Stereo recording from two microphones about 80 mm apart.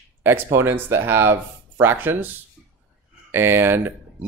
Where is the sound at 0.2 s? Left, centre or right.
Right.